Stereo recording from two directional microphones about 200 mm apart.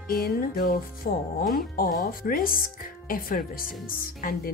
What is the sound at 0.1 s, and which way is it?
Speech, 45° left (ahead or behind).